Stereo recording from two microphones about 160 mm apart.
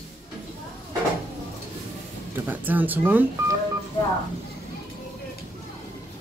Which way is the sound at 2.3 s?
10° right (ahead or behind).